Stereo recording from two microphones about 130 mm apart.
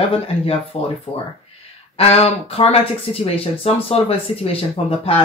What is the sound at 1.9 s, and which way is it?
Speech, 50° left (ahead or behind).